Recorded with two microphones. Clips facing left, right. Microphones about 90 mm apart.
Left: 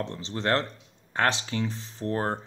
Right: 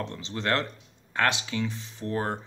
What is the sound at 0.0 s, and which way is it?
Speech, 30° left (ahead or behind).